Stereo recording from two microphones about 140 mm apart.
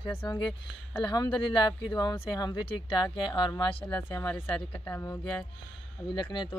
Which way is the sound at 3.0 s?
35° left (ahead or behind).